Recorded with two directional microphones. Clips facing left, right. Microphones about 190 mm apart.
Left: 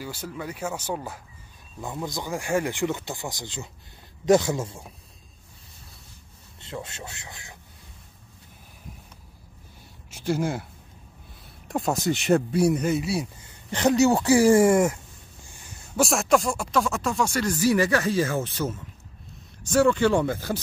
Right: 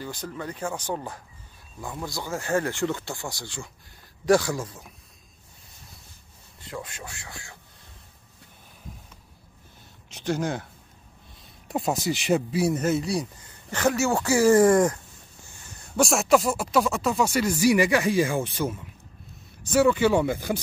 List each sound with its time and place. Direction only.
0.0 s speech: 10° left (ahead or behind)
1.8 s speech: 20° left (ahead or behind)
6.6 s speech: 25° left (ahead or behind)
10.1 s speech: 5° left (ahead or behind)
13.2 s speech: 15° left (ahead or behind)
16.0 s speech: centre (ahead or behind)